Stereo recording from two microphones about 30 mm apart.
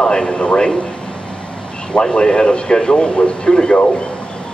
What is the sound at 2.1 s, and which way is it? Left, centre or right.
Speech, left.